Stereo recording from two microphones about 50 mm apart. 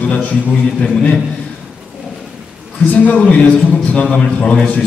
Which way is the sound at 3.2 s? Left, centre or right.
Left.